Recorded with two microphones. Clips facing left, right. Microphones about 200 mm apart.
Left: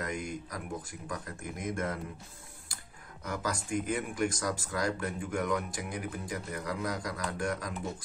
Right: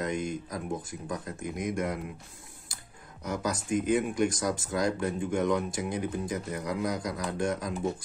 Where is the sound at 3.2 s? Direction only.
20° right (ahead or behind).